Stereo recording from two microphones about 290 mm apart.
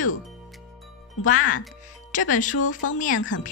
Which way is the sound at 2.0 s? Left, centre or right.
Left.